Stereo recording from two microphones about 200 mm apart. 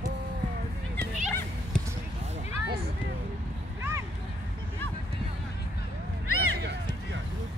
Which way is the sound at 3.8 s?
15° right (ahead or behind).